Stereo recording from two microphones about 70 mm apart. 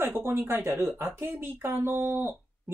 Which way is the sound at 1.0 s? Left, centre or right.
Right.